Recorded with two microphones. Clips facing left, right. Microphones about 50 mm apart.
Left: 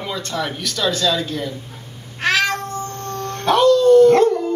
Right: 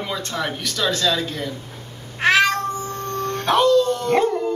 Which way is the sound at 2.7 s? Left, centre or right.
Centre.